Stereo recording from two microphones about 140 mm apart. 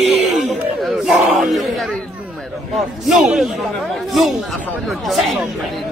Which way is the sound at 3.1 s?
Centre (ahead or behind).